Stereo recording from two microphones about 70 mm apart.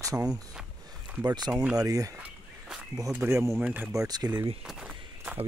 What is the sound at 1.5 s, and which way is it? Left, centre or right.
Speech, centre.